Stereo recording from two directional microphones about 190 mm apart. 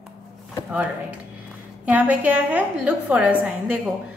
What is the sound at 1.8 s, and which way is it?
A woman's voice, 5° right (ahead or behind).